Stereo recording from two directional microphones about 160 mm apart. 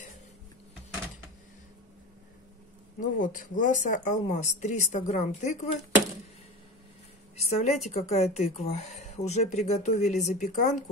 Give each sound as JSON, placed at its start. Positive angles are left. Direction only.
{"t": 3.0, "sound": "speech", "side_deg": 55}
{"t": 7.3, "sound": "a sound", "side_deg": 45}
{"t": 7.9, "sound": "speech", "side_deg": 40}